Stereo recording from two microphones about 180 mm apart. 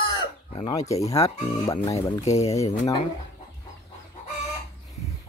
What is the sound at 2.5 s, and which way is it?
Speech, 20° left (ahead or behind).